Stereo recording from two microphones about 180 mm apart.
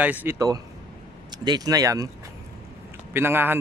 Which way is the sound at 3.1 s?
10° right (ahead or behind).